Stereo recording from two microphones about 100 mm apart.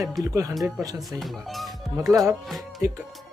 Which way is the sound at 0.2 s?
35° right (ahead or behind).